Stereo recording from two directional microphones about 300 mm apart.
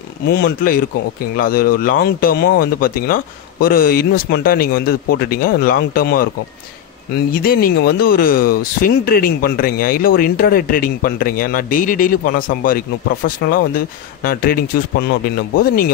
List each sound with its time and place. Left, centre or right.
0.3 s speech: left